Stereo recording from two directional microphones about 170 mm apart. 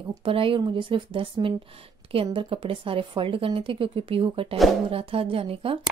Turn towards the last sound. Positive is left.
turn(degrees=-35)  # may be behind; listen again after turning